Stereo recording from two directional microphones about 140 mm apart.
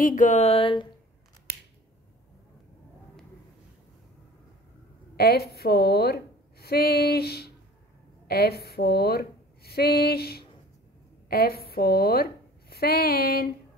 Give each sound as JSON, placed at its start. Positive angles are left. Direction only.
{"t": 0.0, "sound": "speech", "side_deg": 65}
{"t": 5.1, "sound": "a sound", "side_deg": 90}
{"t": 8.3, "sound": "speech", "side_deg": 90}